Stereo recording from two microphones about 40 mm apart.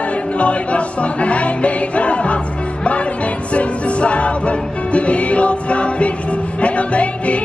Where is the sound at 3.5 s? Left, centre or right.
Left.